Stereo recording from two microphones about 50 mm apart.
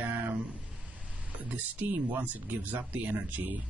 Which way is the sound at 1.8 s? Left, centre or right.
Right.